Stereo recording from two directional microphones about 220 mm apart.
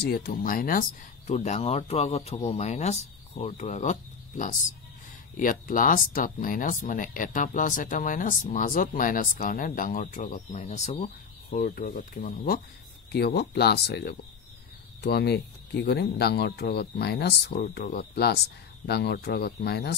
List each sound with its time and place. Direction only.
0.0 s speech: 45° left (ahead or behind)